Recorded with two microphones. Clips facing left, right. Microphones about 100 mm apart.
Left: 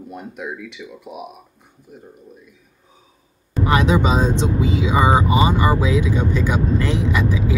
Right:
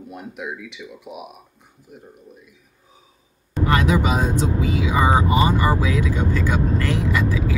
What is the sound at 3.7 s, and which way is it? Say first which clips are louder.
Speech: left 2 dB; 20° left (ahead or behind).